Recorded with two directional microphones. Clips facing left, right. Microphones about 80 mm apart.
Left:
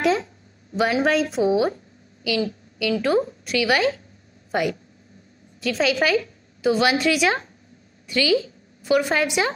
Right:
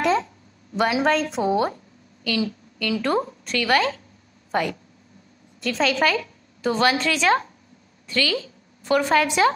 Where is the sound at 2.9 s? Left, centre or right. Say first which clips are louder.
Left 2 dB; centre.